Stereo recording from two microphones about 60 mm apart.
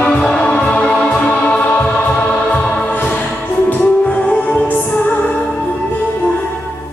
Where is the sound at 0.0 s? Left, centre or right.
Centre.